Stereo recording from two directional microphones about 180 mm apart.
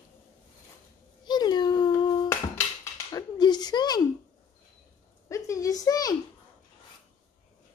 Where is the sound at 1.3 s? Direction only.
25° left (ahead or behind).